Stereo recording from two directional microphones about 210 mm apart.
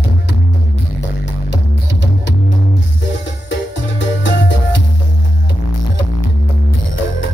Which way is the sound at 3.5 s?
60° left (ahead or behind).